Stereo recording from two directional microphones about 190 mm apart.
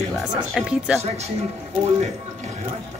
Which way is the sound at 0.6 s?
5° right (ahead or behind).